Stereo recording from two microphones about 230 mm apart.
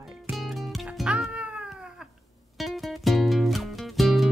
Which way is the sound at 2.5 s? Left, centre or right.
Centre.